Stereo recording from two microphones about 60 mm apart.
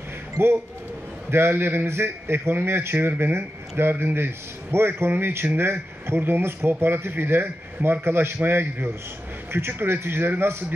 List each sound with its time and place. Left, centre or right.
1.3 s a man's voice: right